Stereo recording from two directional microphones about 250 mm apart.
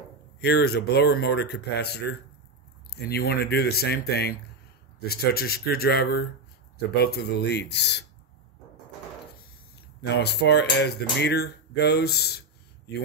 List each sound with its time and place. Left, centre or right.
0.4 s speech: left
10.0 s speech: left